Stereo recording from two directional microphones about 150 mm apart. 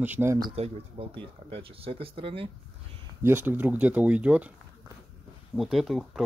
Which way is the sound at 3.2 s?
15° right (ahead or behind).